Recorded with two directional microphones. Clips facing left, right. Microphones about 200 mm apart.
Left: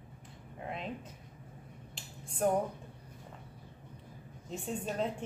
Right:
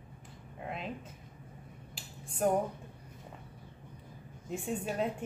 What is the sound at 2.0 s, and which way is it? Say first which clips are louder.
Finger snapping: even; 5° right (ahead or behind).